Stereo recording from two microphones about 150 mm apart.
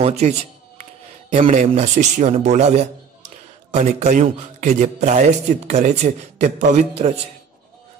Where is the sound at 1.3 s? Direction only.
45° right (ahead or behind).